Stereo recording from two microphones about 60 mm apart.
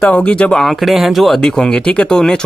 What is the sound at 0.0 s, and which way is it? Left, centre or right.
Speech, left.